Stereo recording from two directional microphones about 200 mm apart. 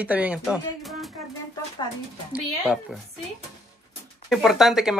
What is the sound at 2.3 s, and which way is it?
Speech, 5° right (ahead or behind).